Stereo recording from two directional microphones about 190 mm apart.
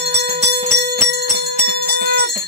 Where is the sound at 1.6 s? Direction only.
55° right (ahead or behind).